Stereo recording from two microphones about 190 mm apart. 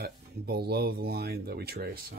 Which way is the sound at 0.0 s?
55° right (ahead or behind).